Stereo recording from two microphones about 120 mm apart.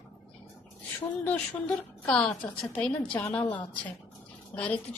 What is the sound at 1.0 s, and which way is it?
A woman's voice, 15° left (ahead or behind).